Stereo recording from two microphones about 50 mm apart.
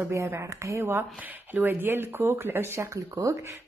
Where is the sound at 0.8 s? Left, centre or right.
Right.